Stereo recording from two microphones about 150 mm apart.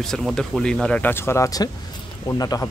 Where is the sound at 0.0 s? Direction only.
Centre (ahead or behind).